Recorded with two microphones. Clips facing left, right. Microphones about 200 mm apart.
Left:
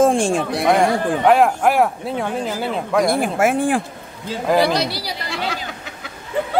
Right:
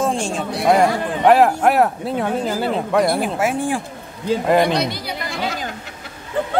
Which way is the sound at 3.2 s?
50° left (ahead or behind).